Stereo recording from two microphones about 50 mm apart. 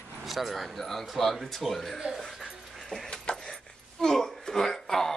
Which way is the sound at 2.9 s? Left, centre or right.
Centre.